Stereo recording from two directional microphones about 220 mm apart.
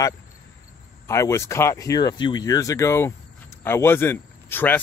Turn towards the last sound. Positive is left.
turn(degrees=10)  # may be behind; listen again after turning